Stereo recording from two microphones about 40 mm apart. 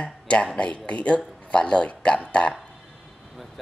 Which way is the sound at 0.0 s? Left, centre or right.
Left.